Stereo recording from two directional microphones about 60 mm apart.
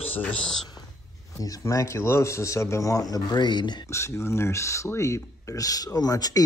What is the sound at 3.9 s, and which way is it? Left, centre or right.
Speech, left.